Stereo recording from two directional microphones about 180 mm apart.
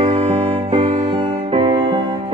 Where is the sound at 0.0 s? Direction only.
35° right (ahead or behind).